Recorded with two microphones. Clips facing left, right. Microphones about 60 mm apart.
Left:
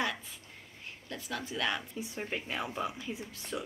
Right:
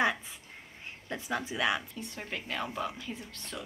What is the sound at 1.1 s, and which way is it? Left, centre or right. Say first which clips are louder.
Speech: right 4 dB; right.